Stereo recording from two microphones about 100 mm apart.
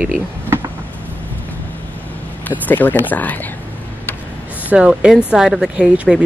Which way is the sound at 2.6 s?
15° left (ahead or behind).